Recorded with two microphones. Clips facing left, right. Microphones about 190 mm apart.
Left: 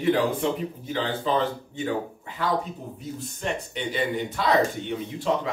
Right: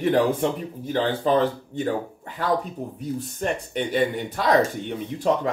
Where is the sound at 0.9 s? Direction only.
50° right (ahead or behind).